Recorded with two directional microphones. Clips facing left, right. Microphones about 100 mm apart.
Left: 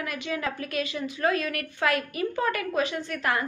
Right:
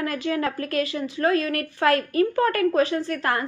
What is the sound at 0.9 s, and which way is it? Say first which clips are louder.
A woman's voice: right 3 dB; 30° right (ahead or behind).